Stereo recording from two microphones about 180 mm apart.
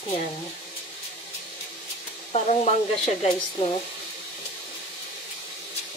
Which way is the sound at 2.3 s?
35° left (ahead or behind).